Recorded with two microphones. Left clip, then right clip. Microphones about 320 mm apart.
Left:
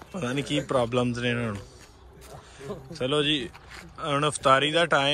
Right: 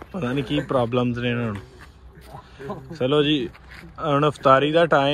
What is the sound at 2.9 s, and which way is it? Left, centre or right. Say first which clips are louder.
Speech: right 5 dB; centre.